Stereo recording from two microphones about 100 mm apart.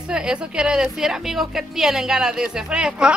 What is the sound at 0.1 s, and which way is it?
A woman's voice, 10° right (ahead or behind).